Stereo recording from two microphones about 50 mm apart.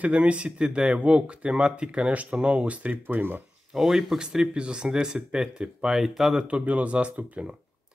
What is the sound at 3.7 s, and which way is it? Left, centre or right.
Speech, centre.